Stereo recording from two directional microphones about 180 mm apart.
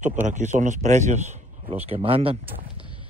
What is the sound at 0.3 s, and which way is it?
A man's voice, 40° right (ahead or behind).